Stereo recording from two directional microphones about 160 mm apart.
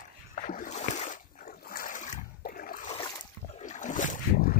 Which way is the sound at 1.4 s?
65° left (ahead or behind).